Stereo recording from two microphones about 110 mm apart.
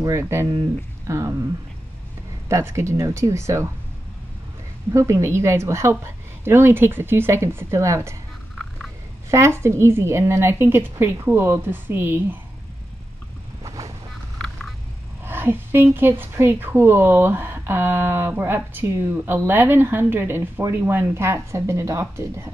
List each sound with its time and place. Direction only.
0.0 s a woman's voice: 25° right (ahead or behind)
2.4 s a woman's voice: 25° right (ahead or behind)
4.9 s a woman's voice: 30° right (ahead or behind)
9.3 s a woman's voice: 25° right (ahead or behind)
13.7 s vehicle: 30° right (ahead or behind)
15.2 s a woman's voice: 20° right (ahead or behind)